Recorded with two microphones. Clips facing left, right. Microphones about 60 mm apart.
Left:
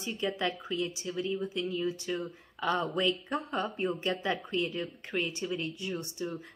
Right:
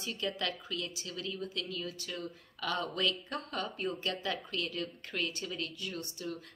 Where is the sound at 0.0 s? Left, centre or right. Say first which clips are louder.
Left 4 dB; centre.